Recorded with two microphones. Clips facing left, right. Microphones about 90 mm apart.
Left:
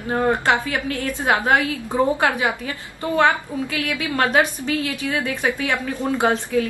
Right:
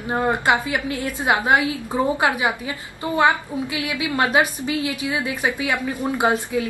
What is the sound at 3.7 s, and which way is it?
A woman's voice, 15° right (ahead or behind).